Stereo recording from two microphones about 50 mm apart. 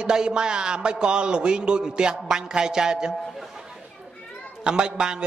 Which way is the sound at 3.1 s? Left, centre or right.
Centre.